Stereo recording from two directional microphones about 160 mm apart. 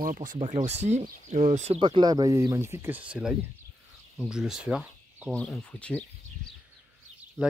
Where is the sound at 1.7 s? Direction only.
30° right (ahead or behind); by 6.0 s 5° left (ahead or behind).